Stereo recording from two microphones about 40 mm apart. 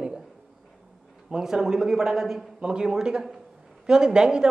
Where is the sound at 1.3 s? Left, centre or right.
Centre.